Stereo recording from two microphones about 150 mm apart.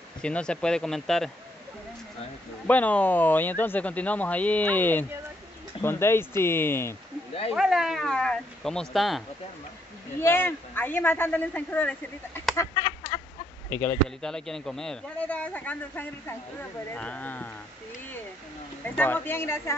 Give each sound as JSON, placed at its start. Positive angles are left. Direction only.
{"t": 0.2, "sound": "speech", "side_deg": 5}
{"t": 2.6, "sound": "speech", "side_deg": 10}
{"t": 7.5, "sound": "speech", "side_deg": -5}
{"t": 10.2, "sound": "speech", "side_deg": 15}
{"t": 12.5, "sound": "a sound", "side_deg": 25}
{"t": 13.7, "sound": "speech", "side_deg": 15}
{"t": 18.9, "sound": "speech", "side_deg": 15}